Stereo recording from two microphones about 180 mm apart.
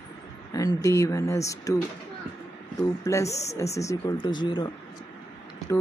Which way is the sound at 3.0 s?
15° left (ahead or behind).